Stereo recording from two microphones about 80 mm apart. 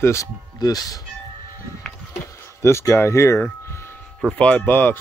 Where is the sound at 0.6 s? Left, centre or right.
Left.